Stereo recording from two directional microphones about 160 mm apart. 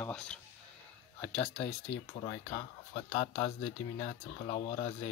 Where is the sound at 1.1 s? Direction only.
20° left (ahead or behind).